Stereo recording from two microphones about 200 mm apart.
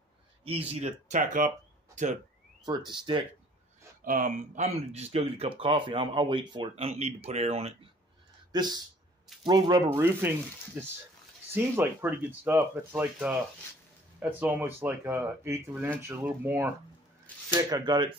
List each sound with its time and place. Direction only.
0.4 s speech: 30° right (ahead or behind)
2.6 s speech: 20° right (ahead or behind)
4.0 s speech: 45° right (ahead or behind)
8.5 s speech: 20° right (ahead or behind)
14.4 s speech: 10° right (ahead or behind)